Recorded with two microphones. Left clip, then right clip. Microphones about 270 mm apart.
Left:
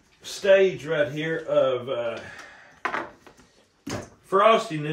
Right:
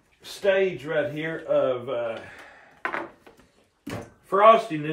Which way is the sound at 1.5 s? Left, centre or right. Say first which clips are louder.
Left 1 dB; centre.